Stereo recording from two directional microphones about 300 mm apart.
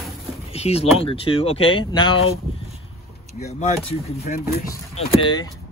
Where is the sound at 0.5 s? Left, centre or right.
Centre.